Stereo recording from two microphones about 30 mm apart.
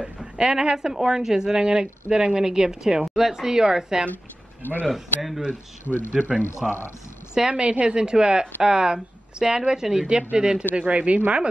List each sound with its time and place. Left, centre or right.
0.0 s a sound: right
0.7 s speech: centre
4.8 s speech: centre
5.5 s a man's voice: left
6.6 s speech: centre
7.3 s a woman's voice: right
10.8 s speech: right